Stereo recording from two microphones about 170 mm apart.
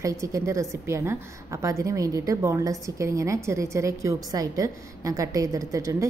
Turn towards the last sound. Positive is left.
turn(degrees=-20)  # may be behind; listen again after turning